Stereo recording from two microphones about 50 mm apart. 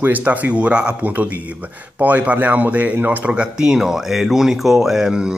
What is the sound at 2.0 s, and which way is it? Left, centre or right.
Speech, right.